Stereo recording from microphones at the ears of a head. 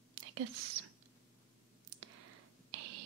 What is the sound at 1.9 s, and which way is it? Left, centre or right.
Clicking, right.